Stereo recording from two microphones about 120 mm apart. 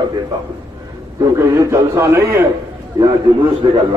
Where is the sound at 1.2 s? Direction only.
25° right (ahead or behind).